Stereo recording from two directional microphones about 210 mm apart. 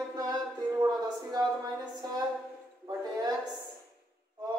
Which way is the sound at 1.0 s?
20° right (ahead or behind).